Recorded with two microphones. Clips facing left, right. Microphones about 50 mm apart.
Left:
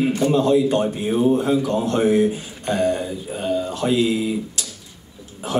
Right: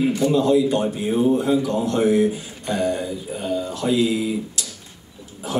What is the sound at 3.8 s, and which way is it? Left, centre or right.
Speech, left.